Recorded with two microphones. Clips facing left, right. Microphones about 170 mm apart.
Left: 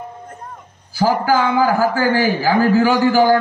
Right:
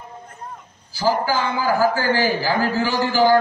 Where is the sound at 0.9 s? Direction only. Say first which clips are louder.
Left 4 dB; 55° left (ahead or behind).